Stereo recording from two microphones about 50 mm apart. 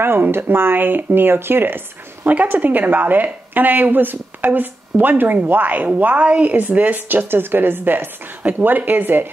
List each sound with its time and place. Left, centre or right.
0.0 s speech: right
8.4 s speech: right